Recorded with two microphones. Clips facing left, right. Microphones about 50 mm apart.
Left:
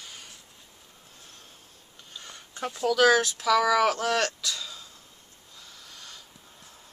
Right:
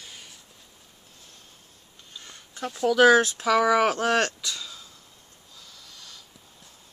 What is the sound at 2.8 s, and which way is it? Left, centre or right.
Speech, right.